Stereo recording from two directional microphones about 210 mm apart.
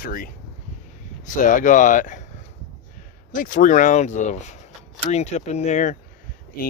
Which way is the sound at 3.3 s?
40° left (ahead or behind).